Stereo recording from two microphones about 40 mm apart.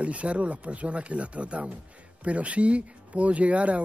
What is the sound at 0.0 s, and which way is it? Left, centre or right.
Speech, right.